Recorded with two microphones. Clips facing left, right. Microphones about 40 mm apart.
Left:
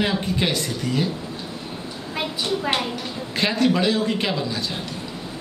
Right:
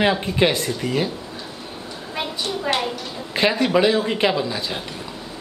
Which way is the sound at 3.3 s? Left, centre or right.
Centre.